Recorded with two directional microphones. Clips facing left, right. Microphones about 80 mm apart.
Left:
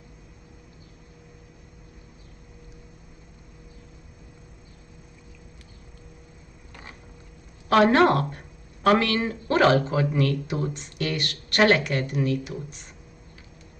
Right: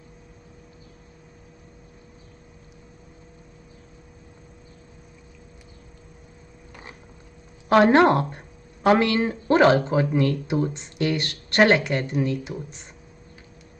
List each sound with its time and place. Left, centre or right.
7.7 s a woman's voice: right
8.1 s a sound: right
9.0 s speech: right